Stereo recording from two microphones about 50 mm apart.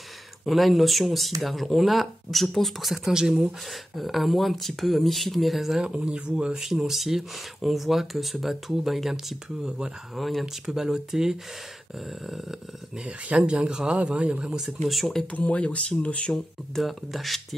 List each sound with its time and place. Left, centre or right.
0.5 s speech: centre
3.9 s speech: centre
5.8 s speech: centre
10.1 s speech: centre
10.4 s speech: centre
13.0 s speech: right
14.8 s speech: centre
15.3 s speech: left
16.3 s speech: centre